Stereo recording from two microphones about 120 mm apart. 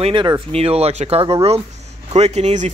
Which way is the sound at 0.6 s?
60° right (ahead or behind).